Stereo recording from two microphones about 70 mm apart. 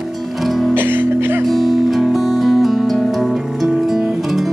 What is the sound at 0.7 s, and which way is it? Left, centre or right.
Music, right.